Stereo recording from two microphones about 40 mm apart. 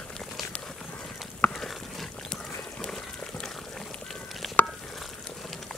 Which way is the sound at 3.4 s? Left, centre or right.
Centre.